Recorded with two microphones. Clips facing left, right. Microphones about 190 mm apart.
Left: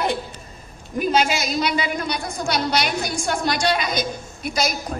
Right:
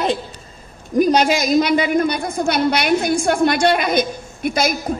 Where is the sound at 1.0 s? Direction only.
40° right (ahead or behind).